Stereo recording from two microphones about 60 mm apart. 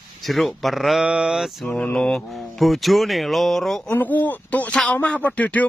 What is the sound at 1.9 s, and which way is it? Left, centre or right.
Speech, centre.